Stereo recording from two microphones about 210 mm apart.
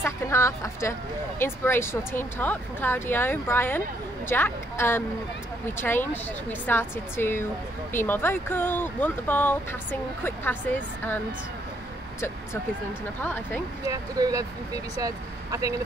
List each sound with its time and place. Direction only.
0.0 s speech: 15° left (ahead or behind)
13.2 s speech: 10° left (ahead or behind)
13.8 s speech: 15° right (ahead or behind)